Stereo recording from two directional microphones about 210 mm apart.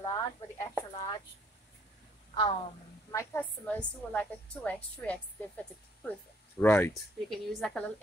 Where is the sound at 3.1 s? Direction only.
15° left (ahead or behind).